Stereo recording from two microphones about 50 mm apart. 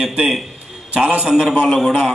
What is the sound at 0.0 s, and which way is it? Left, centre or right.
Speech, centre.